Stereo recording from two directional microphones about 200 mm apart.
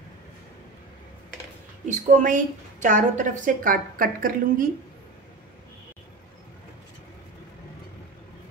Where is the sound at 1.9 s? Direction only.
40° right (ahead or behind).